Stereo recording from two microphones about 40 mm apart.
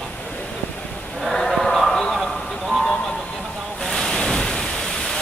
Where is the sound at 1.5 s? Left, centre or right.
Centre.